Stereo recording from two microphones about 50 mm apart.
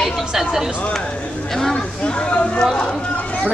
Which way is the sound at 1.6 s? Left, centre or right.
Centre.